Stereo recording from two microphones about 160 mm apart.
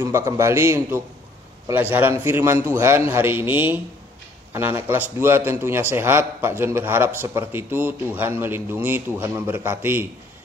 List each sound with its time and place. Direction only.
0.0 s a man's voice: 20° right (ahead or behind)